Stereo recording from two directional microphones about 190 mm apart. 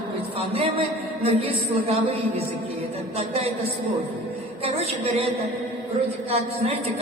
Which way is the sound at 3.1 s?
30° right (ahead or behind).